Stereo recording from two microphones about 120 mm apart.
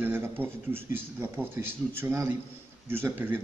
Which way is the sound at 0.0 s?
15° right (ahead or behind).